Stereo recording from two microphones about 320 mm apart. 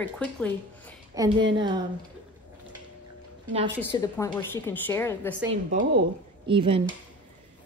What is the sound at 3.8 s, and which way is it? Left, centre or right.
Speech, centre.